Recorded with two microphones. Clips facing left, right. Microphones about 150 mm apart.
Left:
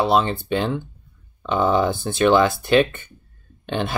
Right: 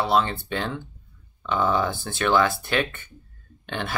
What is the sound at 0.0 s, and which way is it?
Speech, 20° left (ahead or behind).